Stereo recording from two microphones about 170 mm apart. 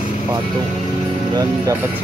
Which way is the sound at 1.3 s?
20° right (ahead or behind).